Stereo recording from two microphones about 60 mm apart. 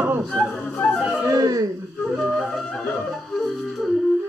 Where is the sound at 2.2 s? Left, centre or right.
Centre.